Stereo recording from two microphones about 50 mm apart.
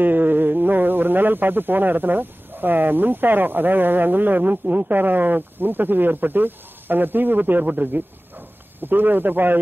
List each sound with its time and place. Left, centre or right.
0.0 s speech: right